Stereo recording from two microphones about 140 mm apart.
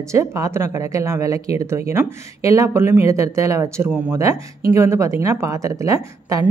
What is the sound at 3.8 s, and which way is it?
Speech, 10° right (ahead or behind).